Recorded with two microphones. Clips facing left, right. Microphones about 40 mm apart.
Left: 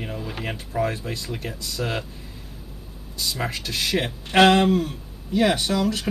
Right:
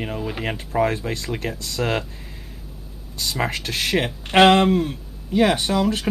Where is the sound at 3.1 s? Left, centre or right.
Right.